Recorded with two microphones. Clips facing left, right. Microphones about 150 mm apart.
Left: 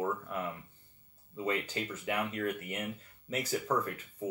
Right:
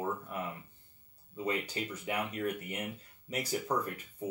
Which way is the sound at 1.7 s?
15° right (ahead or behind).